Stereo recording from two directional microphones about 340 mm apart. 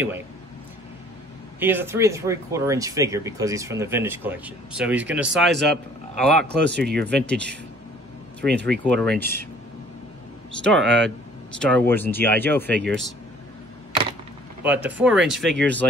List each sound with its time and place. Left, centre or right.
1.6 s speech: centre
6.7 s speech: right
7.1 s speech: centre
8.5 s speech: right
8.8 s speech: centre
10.6 s speech: centre
14.6 s speech: centre